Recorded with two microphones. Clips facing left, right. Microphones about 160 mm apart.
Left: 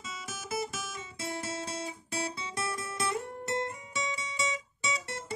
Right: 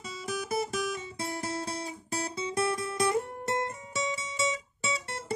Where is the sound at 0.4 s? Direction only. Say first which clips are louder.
Right 4 dB; 50° right (ahead or behind).